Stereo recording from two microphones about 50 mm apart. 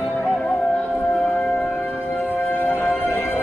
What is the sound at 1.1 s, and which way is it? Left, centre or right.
Music, centre.